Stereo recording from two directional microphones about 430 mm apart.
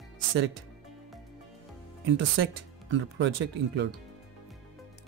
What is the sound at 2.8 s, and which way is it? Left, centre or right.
Speech, right.